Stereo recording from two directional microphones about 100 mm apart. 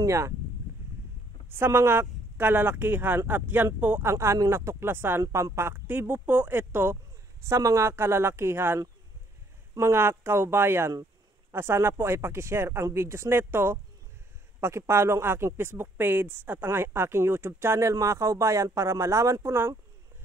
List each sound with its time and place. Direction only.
0.0 s speech: 30° right (ahead or behind)
1.5 s speech: 25° right (ahead or behind)